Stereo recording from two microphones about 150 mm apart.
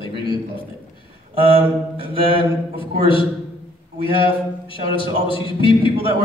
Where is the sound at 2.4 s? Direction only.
35° left (ahead or behind).